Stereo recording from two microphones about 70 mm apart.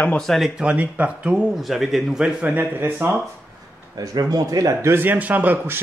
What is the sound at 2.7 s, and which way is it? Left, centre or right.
Speech, right.